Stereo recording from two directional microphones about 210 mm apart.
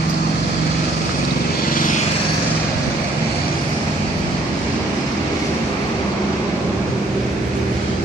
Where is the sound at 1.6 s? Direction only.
40° left (ahead or behind).